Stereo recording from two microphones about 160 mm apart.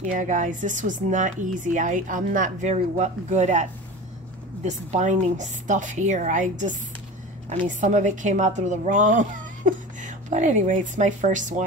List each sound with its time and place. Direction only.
0.0 s a woman's voice: 50° right (ahead or behind)
4.6 s a woman's voice: 45° right (ahead or behind)